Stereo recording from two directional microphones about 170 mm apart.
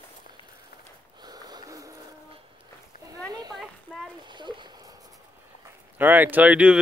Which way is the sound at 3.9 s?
Centre (ahead or behind).